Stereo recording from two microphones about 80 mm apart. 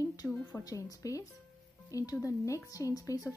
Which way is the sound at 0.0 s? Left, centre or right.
Left.